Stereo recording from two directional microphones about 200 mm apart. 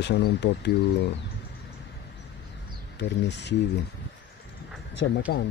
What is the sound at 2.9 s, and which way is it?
Speech, 60° left (ahead or behind).